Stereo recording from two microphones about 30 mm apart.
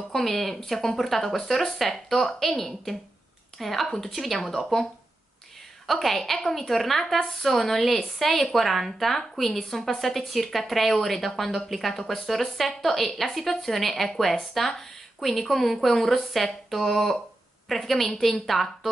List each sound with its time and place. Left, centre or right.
0.1 s a woman's voice: centre
5.9 s a woman's voice: centre
11.9 s a woman's voice: centre